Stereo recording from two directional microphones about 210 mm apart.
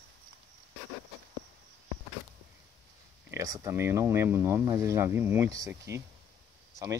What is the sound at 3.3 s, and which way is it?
Speech, 15° right (ahead or behind).